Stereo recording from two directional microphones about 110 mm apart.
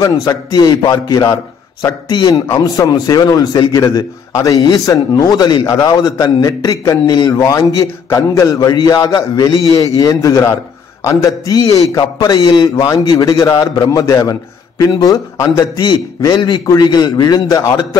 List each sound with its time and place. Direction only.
0.0 s a man's voice: 35° left (ahead or behind)
15.8 s a man's voice: 40° left (ahead or behind)